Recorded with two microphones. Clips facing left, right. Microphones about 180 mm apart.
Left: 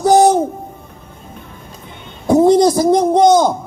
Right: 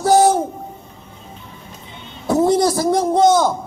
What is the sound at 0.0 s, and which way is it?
Music, 20° left (ahead or behind).